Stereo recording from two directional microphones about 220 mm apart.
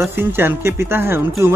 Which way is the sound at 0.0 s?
10° right (ahead or behind).